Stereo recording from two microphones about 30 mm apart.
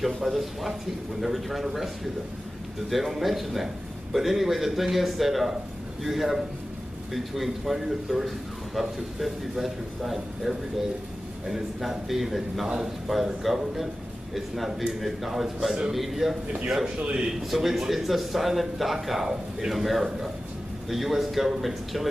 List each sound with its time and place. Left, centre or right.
0.0 s a man's voice: centre
2.9 s a man's voice: centre
12.6 s speech: right
13.1 s a man's voice: centre
17.4 s a man's voice: centre